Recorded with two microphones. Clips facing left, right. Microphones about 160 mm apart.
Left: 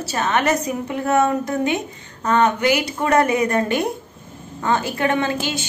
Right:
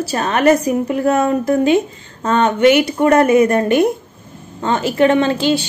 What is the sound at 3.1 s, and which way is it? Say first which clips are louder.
Speech: right 5 dB; 20° left (ahead or behind).